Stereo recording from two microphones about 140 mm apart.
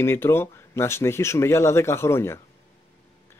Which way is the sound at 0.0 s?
15° left (ahead or behind).